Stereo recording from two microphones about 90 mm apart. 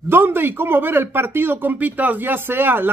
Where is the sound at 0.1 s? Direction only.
25° right (ahead or behind).